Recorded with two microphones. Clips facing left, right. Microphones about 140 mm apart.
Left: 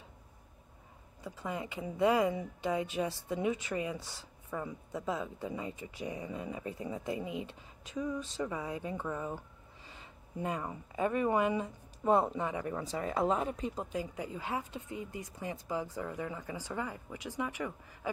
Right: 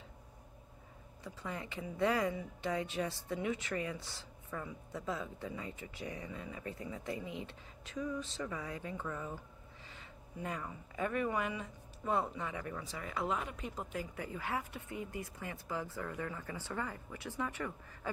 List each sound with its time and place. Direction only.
1.2 s speech: 15° left (ahead or behind)
10.4 s speech: 25° left (ahead or behind)